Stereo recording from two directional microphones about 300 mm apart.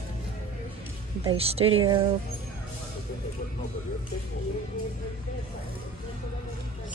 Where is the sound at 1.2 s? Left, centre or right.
Centre.